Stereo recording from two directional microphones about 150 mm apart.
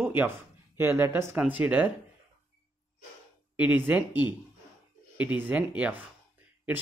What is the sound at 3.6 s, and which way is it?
Speech, 10° right (ahead or behind).